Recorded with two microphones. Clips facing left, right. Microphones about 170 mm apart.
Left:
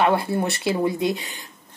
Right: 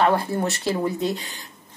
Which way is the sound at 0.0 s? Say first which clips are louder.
Even; 15° left (ahead or behind).